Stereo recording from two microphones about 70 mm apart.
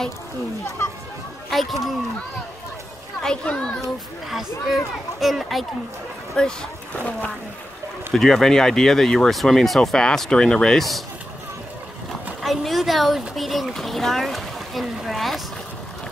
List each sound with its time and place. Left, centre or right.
1.5 s speech: centre
3.2 s a child's voice: centre
4.3 s speech: centre
6.4 s speech: centre
8.1 s speech: centre
12.4 s speech: centre